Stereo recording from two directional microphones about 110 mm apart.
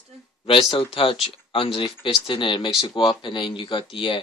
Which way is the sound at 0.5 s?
55° left (ahead or behind).